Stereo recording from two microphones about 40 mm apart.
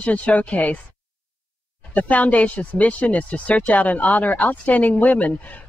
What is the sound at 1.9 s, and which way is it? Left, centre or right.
Speech, left.